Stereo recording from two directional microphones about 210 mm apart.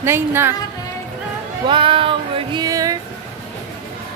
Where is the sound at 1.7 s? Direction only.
25° right (ahead or behind).